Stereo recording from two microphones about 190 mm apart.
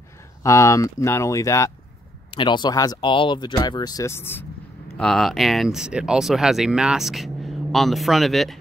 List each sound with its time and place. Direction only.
0.4 s speech: 15° left (ahead or behind)